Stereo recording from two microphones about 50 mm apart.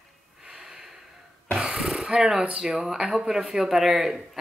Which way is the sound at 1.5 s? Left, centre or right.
Centre.